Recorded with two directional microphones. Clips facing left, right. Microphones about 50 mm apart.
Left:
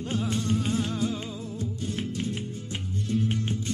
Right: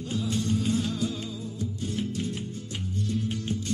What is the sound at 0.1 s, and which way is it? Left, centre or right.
Music, left.